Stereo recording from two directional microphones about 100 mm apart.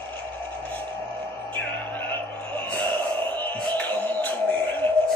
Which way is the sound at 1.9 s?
20° left (ahead or behind).